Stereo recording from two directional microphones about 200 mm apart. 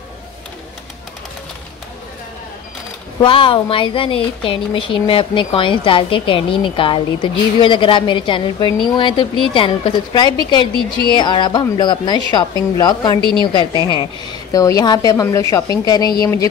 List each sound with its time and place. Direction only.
3.2 s a woman's voice: 25° left (ahead or behind)